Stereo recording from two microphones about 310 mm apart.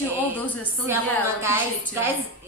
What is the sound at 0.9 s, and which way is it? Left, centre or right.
A woman's voice, centre.